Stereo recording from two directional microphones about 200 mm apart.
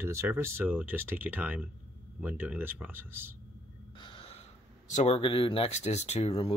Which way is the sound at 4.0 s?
25° left (ahead or behind).